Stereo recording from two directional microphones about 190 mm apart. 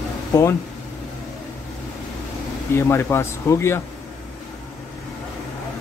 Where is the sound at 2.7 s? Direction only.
15° left (ahead or behind).